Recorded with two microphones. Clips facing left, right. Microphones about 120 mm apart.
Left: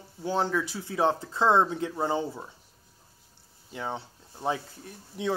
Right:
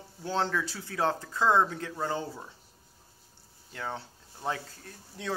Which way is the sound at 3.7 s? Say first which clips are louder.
Left 3 dB; 20° left (ahead or behind).